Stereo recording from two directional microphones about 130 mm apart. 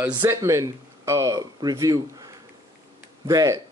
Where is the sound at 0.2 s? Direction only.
20° right (ahead or behind).